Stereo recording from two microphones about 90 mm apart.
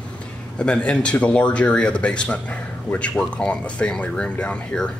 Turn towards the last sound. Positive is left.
turn(degrees=10)  # may be behind; listen again after turning